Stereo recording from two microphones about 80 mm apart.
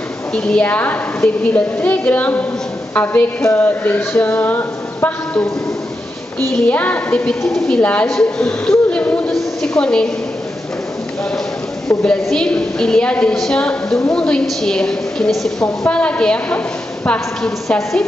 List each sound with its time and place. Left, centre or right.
0.3 s a woman's voice: centre
6.5 s a woman's voice: centre
7.4 s a woman's voice: centre
7.8 s a woman's voice: centre
8.1 s a sound: centre
12.0 s a woman's voice: centre